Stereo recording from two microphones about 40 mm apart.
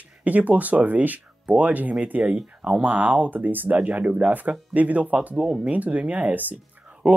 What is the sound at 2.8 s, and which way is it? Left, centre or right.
Speech, right.